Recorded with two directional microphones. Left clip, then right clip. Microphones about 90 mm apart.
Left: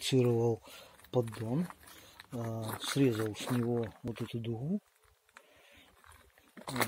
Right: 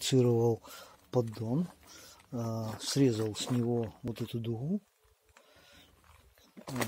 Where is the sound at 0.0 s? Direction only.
30° right (ahead or behind).